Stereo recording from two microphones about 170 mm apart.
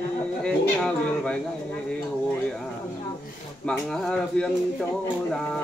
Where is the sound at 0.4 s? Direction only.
5° left (ahead or behind).